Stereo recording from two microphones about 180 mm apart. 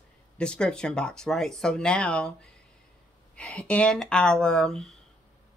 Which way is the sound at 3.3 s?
5° left (ahead or behind).